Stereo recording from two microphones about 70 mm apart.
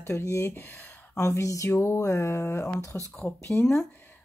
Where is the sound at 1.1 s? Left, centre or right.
Left.